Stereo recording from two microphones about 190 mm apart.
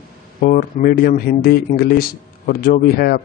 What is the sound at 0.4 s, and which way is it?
Speech, 45° left (ahead or behind).